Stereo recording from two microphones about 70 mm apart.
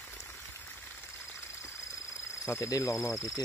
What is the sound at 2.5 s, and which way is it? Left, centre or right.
Speech, left.